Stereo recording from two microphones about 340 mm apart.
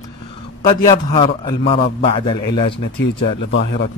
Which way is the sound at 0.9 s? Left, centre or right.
Centre.